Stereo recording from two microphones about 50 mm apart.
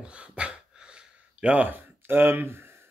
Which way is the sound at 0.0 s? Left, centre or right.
Right.